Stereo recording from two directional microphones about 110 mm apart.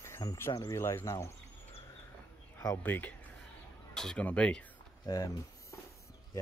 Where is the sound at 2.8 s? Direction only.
15° left (ahead or behind).